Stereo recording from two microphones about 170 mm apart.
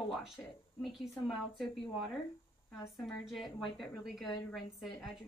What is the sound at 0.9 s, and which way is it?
Speech, centre (ahead or behind).